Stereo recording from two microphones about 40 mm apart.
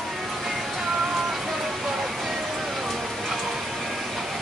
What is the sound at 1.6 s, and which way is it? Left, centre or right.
Music, centre.